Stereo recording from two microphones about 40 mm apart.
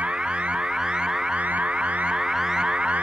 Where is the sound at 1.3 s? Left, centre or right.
Right.